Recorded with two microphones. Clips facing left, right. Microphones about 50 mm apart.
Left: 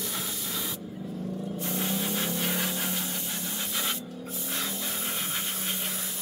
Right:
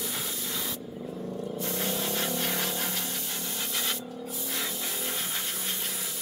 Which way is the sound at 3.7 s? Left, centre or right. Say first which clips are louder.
Left 1 dB; centre.